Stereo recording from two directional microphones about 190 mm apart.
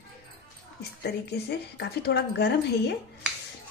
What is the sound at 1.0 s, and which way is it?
A woman's voice, 60° left (ahead or behind).